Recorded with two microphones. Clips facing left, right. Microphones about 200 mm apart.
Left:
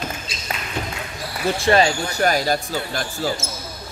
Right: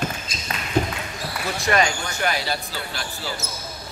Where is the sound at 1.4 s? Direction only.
30° left (ahead or behind).